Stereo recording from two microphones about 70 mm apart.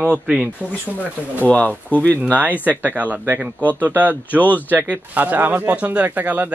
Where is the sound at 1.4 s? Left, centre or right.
Left.